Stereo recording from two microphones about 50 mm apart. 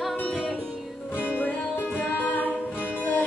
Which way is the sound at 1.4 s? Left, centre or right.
Left.